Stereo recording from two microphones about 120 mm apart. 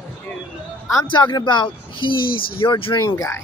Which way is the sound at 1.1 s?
40° left (ahead or behind).